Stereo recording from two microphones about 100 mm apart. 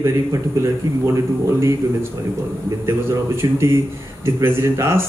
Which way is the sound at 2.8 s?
25° right (ahead or behind).